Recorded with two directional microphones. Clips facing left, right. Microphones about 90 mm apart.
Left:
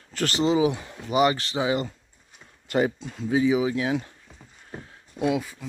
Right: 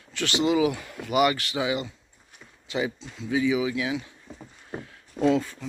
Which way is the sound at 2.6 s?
50° left (ahead or behind).